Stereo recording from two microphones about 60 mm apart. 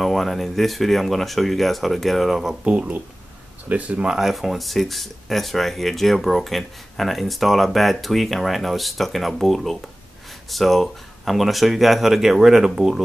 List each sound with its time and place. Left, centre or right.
0.0 s speech: centre
2.6 s speech: centre
4.1 s speech: centre